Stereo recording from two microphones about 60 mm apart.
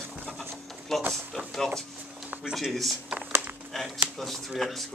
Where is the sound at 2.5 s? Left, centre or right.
Centre.